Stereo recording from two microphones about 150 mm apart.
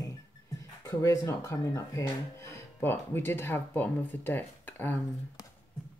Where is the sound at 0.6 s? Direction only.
25° left (ahead or behind).